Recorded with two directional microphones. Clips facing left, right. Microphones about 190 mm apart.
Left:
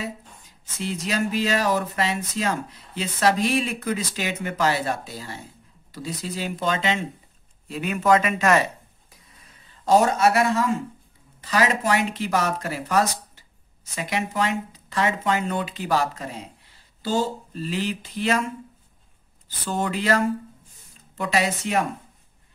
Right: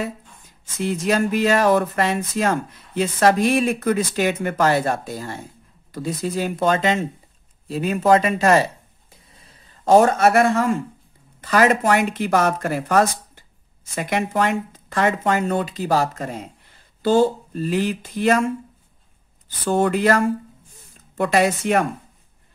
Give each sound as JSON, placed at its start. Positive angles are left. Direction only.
{"t": 0.7, "sound": "speech", "side_deg": -55}
{"t": 7.6, "sound": "a sound", "side_deg": -35}
{"t": 9.7, "sound": "speech", "side_deg": -50}
{"t": 19.6, "sound": "speech", "side_deg": -55}